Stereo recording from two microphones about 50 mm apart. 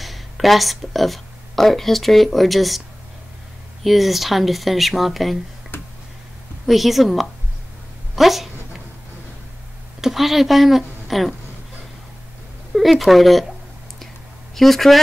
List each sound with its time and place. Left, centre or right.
0.0 s speech: centre
3.8 s speech: centre
5.7 s tick: left
6.6 s speech: centre
8.2 s a sound: centre
10.0 s speech: centre
12.9 s speech: centre
14.5 s speech: centre